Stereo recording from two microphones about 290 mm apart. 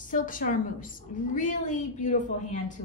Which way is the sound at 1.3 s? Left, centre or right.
Left.